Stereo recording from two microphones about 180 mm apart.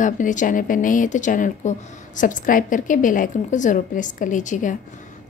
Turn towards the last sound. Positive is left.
turn(degrees=45)  # may be behind; listen again after turning